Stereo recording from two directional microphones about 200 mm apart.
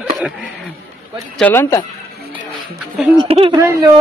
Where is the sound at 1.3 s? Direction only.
10° left (ahead or behind).